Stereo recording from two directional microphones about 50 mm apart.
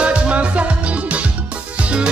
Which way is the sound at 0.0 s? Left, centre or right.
Right.